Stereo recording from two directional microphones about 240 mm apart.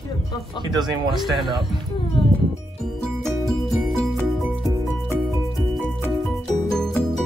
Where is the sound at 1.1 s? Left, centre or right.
Centre.